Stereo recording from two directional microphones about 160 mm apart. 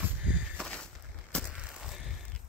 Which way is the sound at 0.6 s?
5° left (ahead or behind).